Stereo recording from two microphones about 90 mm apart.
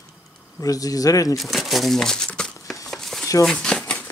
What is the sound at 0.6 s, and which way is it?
Speech, 40° left (ahead or behind).